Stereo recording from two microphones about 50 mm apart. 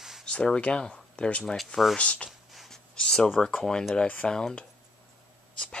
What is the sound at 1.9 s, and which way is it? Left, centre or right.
Speech, left.